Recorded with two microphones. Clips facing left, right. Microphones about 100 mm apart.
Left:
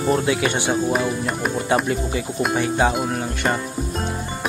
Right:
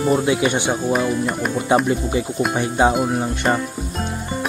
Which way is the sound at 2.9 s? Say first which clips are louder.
Right 4 dB; centre (ahead or behind).